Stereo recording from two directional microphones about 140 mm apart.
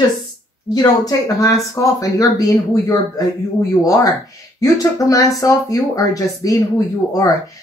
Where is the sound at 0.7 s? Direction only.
25° left (ahead or behind).